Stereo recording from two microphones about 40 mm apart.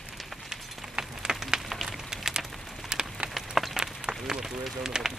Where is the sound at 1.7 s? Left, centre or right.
Centre.